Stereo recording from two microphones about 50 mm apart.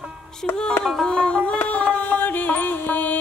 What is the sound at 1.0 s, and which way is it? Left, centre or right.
Music, centre.